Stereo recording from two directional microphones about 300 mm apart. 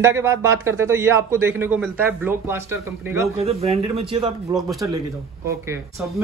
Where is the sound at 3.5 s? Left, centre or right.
Centre.